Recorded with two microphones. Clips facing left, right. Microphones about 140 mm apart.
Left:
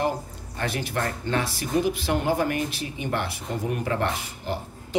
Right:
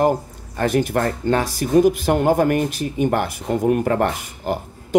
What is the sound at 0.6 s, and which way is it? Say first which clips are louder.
Speech: right 9 dB; 45° right (ahead or behind).